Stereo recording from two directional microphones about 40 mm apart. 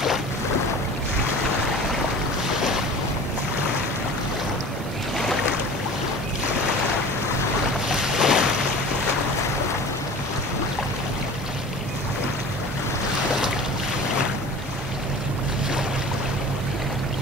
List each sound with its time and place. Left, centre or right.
7.9 s boat: centre